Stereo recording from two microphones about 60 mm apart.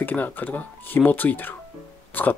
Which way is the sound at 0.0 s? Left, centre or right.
Left.